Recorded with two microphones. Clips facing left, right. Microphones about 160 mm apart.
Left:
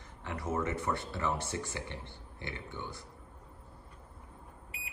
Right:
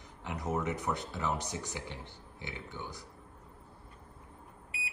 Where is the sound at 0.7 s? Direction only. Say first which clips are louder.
Left 1 dB; 15° right (ahead or behind).